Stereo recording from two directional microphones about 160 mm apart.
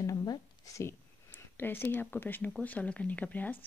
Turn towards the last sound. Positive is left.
turn(degrees=10)  # may be behind; listen again after turning